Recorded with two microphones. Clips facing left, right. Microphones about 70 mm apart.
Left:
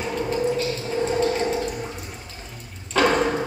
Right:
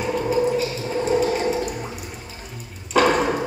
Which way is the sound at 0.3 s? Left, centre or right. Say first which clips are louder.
Right 2 dB; centre.